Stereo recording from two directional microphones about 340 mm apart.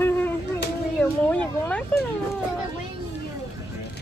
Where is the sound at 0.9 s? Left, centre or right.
Centre.